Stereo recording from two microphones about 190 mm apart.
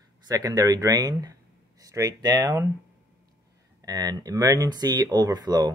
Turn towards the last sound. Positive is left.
turn(degrees=-20)  # may be behind; listen again after turning